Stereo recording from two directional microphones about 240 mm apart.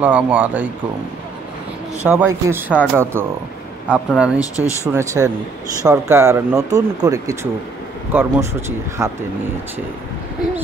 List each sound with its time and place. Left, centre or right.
0.0 s speech: centre
2.0 s speech: centre
4.4 s speech: centre
4.9 s speech: centre